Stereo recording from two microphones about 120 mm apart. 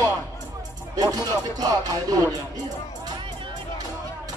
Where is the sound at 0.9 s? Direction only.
35° right (ahead or behind).